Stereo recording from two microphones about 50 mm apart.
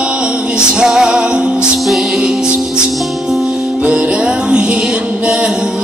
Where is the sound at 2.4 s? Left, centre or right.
Centre.